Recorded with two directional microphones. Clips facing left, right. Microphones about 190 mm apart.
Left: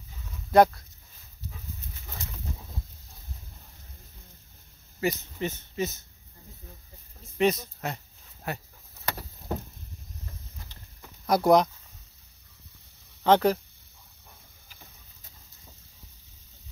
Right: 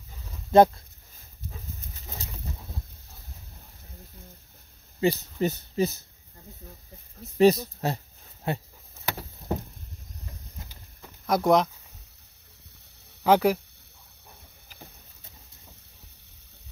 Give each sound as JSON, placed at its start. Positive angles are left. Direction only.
{"t": 0.5, "sound": "speech", "side_deg": -25}
{"t": 5.0, "sound": "speech", "side_deg": -35}
{"t": 7.3, "sound": "speech", "side_deg": -35}
{"t": 11.2, "sound": "speech", "side_deg": 0}
{"t": 13.2, "sound": "speech", "side_deg": -10}